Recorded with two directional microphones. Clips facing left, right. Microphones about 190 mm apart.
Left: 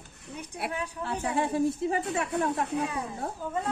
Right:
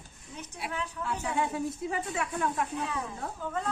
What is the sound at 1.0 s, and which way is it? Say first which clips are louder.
A woman's voice: left 2 dB; 35° left (ahead or behind).